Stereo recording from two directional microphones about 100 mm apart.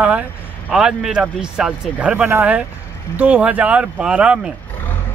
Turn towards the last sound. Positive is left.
turn(degrees=-10)  # may be behind; listen again after turning